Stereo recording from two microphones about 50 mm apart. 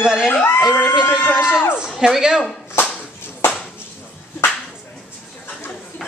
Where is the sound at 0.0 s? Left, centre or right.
Centre.